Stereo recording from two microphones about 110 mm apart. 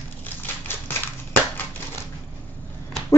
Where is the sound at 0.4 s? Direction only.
20° left (ahead or behind).